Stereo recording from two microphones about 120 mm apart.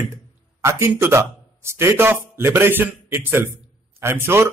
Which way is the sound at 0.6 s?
25° right (ahead or behind).